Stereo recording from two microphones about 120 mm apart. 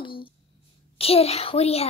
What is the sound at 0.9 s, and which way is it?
Speech, 55° left (ahead or behind).